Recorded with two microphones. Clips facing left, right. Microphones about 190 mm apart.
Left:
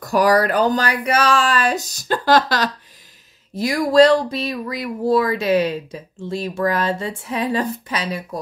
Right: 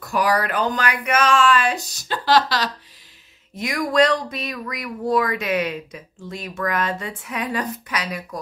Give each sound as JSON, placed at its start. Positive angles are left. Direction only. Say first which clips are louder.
{"t": 0.0, "sound": "speech", "louder": "left 5 dB", "side_deg": 40}
{"t": 3.5, "sound": "speech", "louder": "left 6 dB", "side_deg": 35}